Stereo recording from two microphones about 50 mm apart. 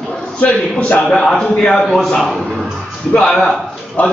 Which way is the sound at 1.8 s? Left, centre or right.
Centre.